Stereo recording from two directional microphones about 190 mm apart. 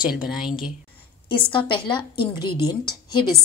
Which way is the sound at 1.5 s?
25° left (ahead or behind).